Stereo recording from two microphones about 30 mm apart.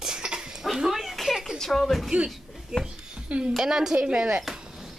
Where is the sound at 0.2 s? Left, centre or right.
Right.